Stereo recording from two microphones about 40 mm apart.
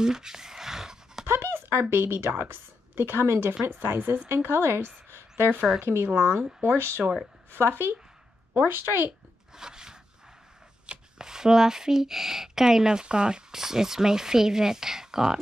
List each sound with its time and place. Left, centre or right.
0.0 s a sound: centre
1.2 s speech: right
4.4 s a woman's voice: right
5.8 s speech: right
9.6 s a sound: centre
11.1 s speech: centre